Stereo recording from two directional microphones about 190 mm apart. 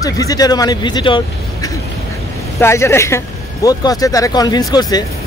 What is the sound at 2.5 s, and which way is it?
Speech, 15° left (ahead or behind).